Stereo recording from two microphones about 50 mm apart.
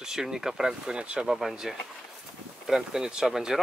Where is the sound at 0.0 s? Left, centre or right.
Centre.